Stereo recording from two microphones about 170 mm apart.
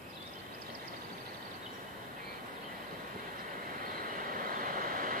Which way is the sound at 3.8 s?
55° right (ahead or behind).